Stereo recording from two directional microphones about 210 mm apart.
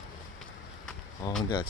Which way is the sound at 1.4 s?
20° left (ahead or behind).